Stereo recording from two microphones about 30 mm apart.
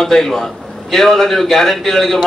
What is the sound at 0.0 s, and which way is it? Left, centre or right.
Speech, centre.